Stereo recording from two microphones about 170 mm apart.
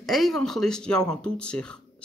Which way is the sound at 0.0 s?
Centre (ahead or behind).